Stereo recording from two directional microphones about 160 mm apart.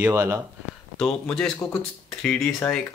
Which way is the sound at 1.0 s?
5° left (ahead or behind).